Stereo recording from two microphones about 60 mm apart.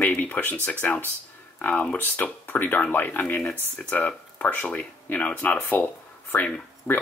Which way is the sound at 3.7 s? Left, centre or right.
Left.